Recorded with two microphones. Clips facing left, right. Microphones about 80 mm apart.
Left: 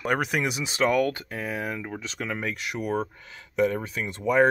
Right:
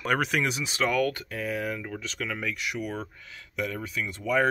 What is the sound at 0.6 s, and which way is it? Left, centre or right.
Speech, left.